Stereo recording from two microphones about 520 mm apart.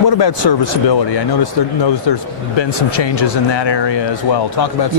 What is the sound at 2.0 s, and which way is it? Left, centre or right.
Speech, left.